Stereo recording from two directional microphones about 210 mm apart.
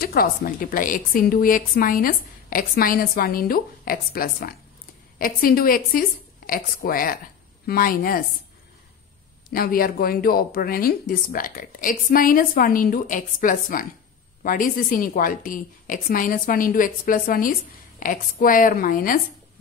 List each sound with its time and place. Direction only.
0.0 s a woman's voice: 45° left (ahead or behind)
9.5 s a woman's voice: 45° left (ahead or behind)